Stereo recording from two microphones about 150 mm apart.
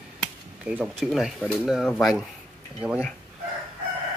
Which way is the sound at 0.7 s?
5° right (ahead or behind).